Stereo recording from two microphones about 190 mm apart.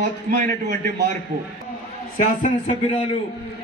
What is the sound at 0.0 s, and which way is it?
A man's voice, 55° right (ahead or behind).